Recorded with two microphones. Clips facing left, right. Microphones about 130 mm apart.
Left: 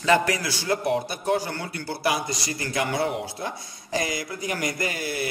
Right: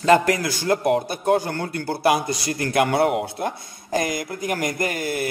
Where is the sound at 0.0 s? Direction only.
45° right (ahead or behind).